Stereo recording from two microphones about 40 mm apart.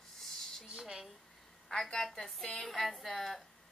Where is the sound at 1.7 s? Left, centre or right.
Centre.